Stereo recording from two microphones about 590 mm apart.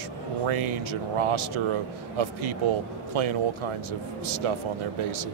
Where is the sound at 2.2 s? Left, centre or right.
Right.